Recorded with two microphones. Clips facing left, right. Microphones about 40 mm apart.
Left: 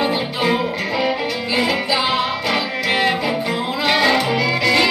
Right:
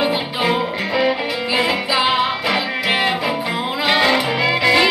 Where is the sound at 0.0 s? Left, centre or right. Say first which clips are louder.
Even; centre.